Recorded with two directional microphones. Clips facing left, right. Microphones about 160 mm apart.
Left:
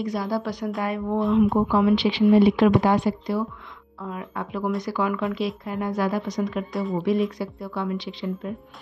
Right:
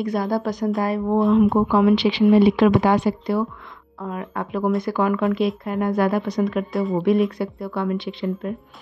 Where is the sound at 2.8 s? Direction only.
75° right (ahead or behind); by 6.6 s 60° right (ahead or behind).